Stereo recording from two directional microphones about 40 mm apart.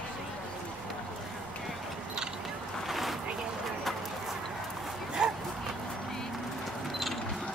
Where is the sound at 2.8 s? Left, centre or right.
Centre.